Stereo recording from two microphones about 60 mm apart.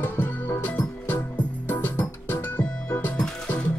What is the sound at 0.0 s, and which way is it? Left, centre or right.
Music, left.